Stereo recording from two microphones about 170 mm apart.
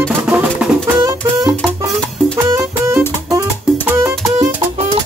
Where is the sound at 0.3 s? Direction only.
5° right (ahead or behind).